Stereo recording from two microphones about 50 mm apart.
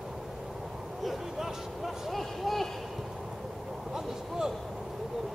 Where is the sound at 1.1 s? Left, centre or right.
Centre.